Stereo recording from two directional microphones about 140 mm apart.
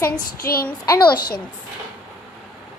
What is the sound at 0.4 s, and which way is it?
Child singing, 90° left.